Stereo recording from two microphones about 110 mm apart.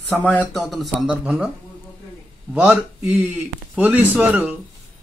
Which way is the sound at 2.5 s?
10° right (ahead or behind).